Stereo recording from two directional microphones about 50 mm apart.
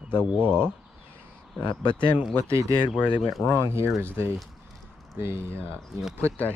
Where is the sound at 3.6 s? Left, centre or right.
Right.